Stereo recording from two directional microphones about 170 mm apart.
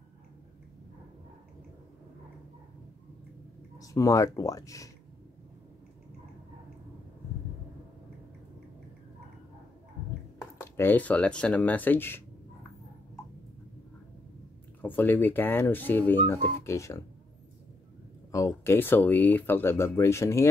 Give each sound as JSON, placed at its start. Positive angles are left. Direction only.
{"t": 3.7, "sound": "speech", "side_deg": 20}
{"t": 10.4, "sound": "speech", "side_deg": 15}
{"t": 14.8, "sound": "speech", "side_deg": 10}
{"t": 18.3, "sound": "speech", "side_deg": 15}